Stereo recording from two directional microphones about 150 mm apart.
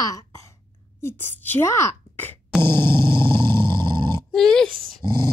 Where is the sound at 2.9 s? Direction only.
30° right (ahead or behind).